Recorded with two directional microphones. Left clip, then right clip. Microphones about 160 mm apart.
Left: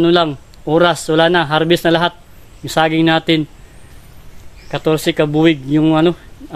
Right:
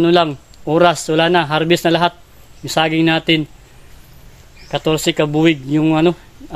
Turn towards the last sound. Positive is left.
turn(degrees=10)  # may be behind; listen again after turning